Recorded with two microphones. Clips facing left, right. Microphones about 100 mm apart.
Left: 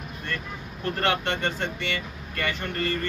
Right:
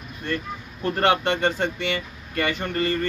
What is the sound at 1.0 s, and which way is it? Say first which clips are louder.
Speech: right 6 dB; 15° right (ahead or behind).